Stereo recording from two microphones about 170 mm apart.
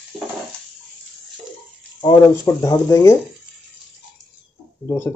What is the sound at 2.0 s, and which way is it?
Speech, 20° left (ahead or behind).